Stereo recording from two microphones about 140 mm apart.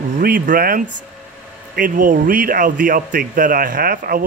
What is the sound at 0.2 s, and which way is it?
Speech, 90° right.